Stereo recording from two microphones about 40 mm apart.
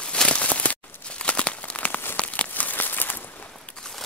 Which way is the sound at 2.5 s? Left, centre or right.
Left.